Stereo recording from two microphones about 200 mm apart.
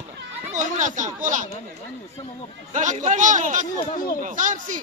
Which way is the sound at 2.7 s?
40° right (ahead or behind).